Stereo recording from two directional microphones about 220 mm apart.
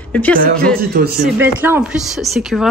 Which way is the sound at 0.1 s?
5° left (ahead or behind).